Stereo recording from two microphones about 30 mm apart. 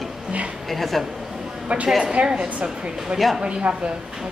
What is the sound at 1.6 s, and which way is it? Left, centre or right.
Speech, right.